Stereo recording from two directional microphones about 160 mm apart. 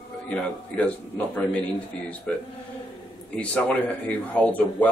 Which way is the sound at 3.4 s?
10° left (ahead or behind).